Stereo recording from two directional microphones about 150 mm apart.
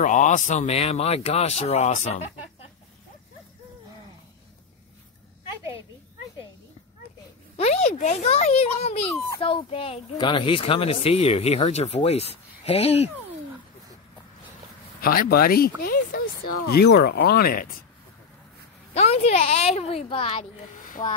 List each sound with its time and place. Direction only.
0.0 s a man's voice: 55° left (ahead or behind)
7.5 s a child's voice: 45° left (ahead or behind)
15.0 s speech: 80° left
18.9 s a man's voice: 45° left (ahead or behind)